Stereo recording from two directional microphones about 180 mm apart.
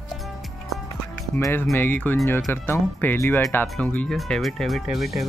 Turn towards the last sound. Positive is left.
turn(degrees=0)  # may be behind; listen again after turning